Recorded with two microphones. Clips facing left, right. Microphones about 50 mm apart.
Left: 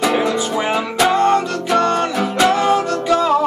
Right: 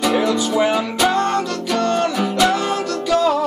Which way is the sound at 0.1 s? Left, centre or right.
Left.